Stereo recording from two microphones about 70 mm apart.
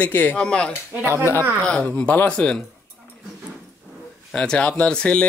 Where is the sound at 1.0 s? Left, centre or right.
Right.